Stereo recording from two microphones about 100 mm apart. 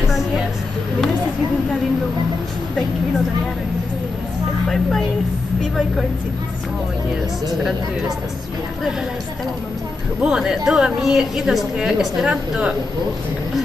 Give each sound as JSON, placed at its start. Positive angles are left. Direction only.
{"t": 10.2, "sound": "speech", "side_deg": -5}